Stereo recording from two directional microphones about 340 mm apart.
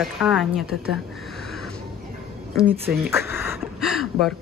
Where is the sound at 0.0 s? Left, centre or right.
Centre.